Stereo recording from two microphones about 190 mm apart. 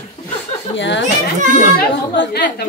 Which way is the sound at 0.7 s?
70° left (ahead or behind).